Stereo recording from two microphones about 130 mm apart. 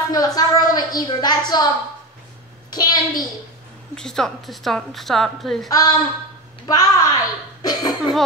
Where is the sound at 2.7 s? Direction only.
30° left (ahead or behind).